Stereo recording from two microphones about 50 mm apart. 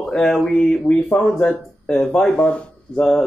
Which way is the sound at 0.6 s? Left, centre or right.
Left.